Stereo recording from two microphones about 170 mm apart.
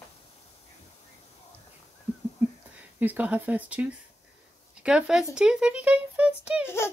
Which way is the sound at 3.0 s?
10° right (ahead or behind).